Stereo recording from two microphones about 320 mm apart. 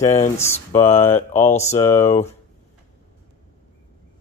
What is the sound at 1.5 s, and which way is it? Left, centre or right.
Speech, centre.